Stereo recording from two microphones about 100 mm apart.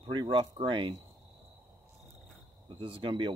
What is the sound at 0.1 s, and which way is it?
Speech, 55° right (ahead or behind).